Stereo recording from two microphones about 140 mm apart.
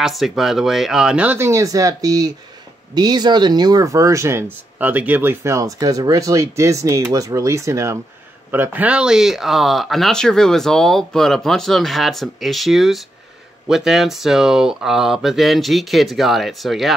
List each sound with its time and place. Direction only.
0.0 s speech: centre (ahead or behind)